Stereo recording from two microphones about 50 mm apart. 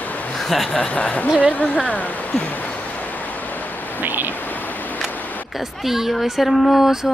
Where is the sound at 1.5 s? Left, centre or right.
Left.